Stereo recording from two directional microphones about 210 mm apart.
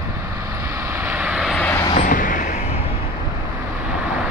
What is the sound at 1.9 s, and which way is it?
Vehicle, 40° left (ahead or behind).